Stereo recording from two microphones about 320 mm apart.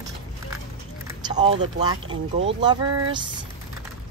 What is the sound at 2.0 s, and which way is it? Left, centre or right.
Speech, right.